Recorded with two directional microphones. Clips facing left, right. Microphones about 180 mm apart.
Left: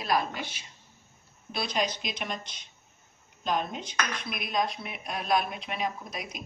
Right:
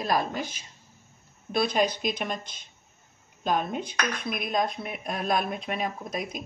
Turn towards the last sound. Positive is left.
turn(degrees=-45)  # may be behind; listen again after turning